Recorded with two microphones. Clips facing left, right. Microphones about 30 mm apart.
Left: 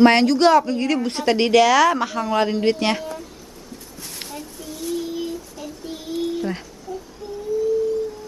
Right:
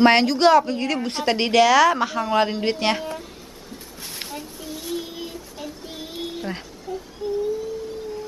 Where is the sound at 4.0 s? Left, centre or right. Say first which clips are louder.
Right 1 dB; centre.